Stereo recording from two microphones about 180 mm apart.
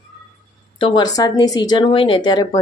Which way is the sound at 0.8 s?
25° left (ahead or behind).